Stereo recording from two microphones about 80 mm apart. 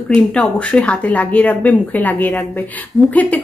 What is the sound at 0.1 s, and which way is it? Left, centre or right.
A woman's voice, centre.